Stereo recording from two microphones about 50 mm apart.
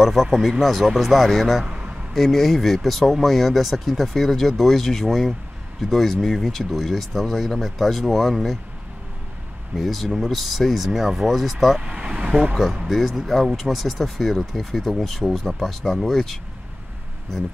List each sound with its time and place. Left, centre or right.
0.0 s speech: centre
9.8 s speech: centre
11.8 s speech: right
12.8 s speech: centre